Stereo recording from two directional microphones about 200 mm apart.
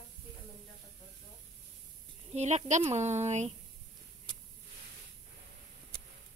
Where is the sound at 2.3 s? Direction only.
35° right (ahead or behind).